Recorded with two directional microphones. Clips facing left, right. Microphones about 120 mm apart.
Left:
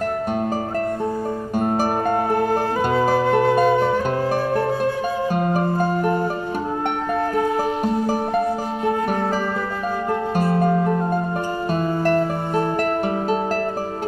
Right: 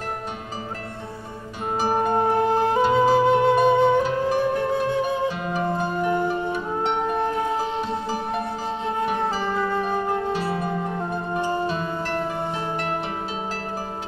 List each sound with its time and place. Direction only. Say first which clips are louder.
2.1 s music: even; 25° right (ahead or behind)
3.0 s flute: left 1 dB; 25° right (ahead or behind)
4.1 s music: left 1 dB; 50° left (ahead or behind)
10.3 s music: left 6 dB; 50° left (ahead or behind)